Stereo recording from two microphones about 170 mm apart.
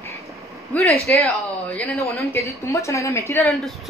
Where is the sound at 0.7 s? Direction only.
10° left (ahead or behind).